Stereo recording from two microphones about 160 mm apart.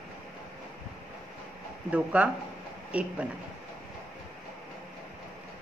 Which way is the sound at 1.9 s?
10° right (ahead or behind).